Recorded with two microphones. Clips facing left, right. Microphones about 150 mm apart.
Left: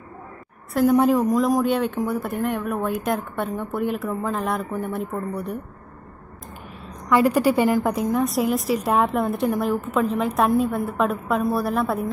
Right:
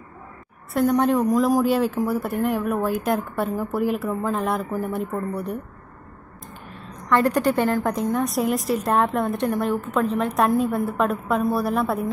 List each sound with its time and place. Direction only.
0.7 s a woman's voice: 5° left (ahead or behind)
7.1 s a woman's voice: 10° left (ahead or behind)